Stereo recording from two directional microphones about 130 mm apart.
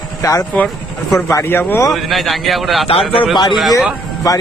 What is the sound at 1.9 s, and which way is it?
Speech, centre (ahead or behind).